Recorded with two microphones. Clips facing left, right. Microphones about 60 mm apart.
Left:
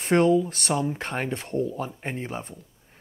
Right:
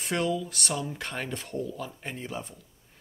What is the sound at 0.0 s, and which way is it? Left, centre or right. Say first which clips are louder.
Speech: left 9 dB; left.